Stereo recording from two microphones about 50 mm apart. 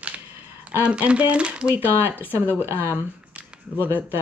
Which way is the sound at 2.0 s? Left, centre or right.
Right.